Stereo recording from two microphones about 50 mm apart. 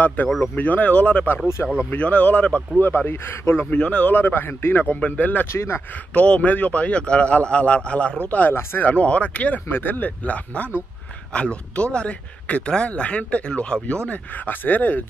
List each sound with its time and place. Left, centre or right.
0.0 s speech: left
3.1 s speech: left
3.7 s speech: left
4.3 s speech: left
5.0 s speech: left
5.5 s speech: left
6.1 s speech: left
9.7 s speech: left